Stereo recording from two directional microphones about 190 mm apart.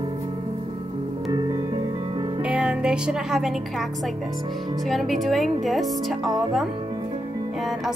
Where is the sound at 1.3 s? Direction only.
20° right (ahead or behind).